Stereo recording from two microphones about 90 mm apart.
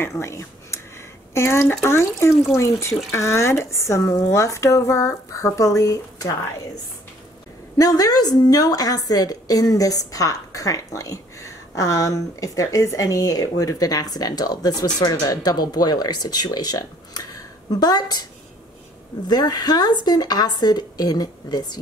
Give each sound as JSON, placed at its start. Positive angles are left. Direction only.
{"t": 0.0, "sound": "speech", "side_deg": 30}
{"t": 7.7, "sound": "a woman's voice", "side_deg": 40}
{"t": 19.2, "sound": "a woman's voice", "side_deg": 50}